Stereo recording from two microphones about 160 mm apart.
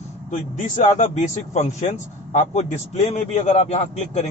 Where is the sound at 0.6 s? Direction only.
50° left (ahead or behind).